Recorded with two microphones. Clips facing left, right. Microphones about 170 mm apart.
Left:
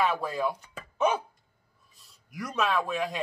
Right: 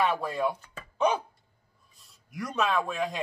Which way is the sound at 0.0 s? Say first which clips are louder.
Even; centre (ahead or behind).